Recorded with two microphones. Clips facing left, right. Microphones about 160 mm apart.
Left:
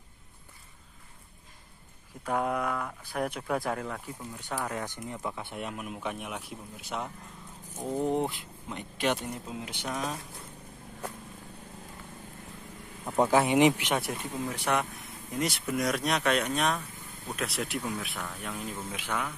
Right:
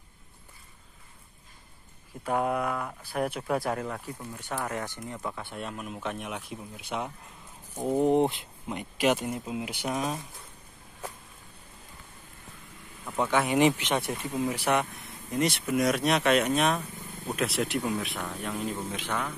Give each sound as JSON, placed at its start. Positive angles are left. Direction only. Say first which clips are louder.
{"t": 2.2, "sound": "speech", "louder": "right 2 dB", "side_deg": -10}
{"t": 4.6, "sound": "speech", "louder": "right 1 dB", "side_deg": 15}
{"t": 7.7, "sound": "speech", "louder": "right 5 dB", "side_deg": -20}
{"t": 8.7, "sound": "speech", "louder": "right 4 dB", "side_deg": -10}
{"t": 13.0, "sound": "speech", "louder": "left 3 dB", "side_deg": 30}
{"t": 13.6, "sound": "speech", "louder": "even", "side_deg": 10}
{"t": 13.9, "sound": "speech", "louder": "right 2 dB", "side_deg": 0}